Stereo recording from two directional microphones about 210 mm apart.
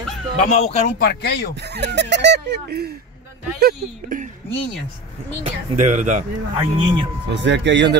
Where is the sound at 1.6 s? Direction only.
50° right (ahead or behind).